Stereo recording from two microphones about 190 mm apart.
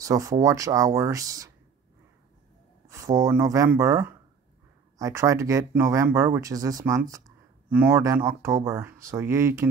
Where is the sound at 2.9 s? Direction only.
15° right (ahead or behind).